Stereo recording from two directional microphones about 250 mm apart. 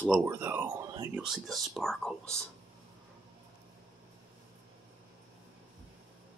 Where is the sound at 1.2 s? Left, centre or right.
Centre.